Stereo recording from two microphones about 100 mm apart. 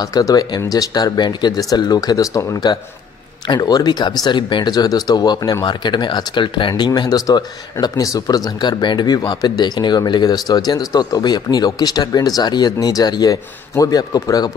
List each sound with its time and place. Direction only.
0.0 s speech: 40° left (ahead or behind)